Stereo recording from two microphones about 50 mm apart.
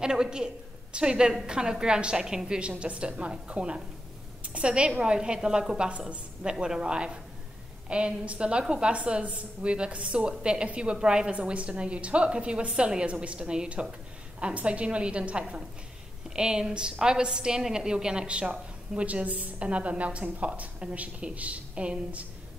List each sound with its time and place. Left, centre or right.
0.0 s a woman's voice: centre